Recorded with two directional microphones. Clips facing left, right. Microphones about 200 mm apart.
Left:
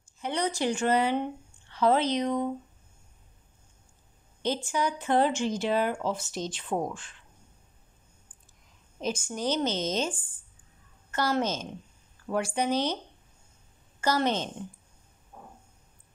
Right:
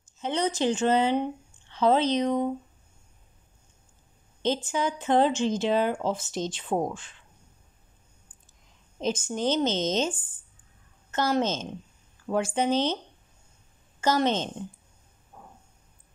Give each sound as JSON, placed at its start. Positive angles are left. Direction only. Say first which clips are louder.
{"t": 0.0, "sound": "speech", "louder": "right 2 dB", "side_deg": -20}
{"t": 4.4, "sound": "speech", "louder": "right 2 dB", "side_deg": -20}
{"t": 9.0, "sound": "a woman's voice", "louder": "right 3 dB", "side_deg": -20}
{"t": 14.0, "sound": "speech", "louder": "right 2 dB", "side_deg": -20}